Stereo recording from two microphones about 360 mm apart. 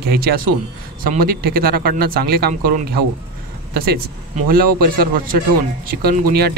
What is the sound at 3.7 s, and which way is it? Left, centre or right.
Speech, right.